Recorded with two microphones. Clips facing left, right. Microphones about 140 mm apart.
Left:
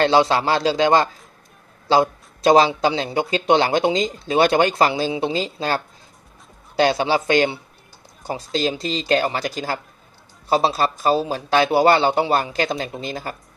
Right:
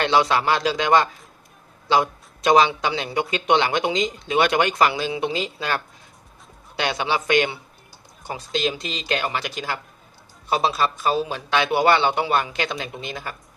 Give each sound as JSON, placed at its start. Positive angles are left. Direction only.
{"t": 0.0, "sound": "a man's voice", "side_deg": 30}
{"t": 6.8, "sound": "speech", "side_deg": 35}